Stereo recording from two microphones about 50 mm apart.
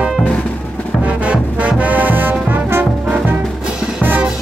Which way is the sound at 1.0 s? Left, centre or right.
Right.